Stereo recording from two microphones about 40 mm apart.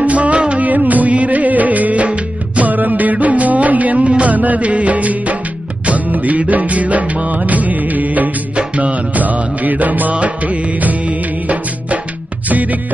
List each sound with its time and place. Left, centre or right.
0.0 s music: right
0.7 s music: right